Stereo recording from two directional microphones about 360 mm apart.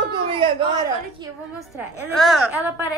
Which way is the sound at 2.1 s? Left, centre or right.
Centre.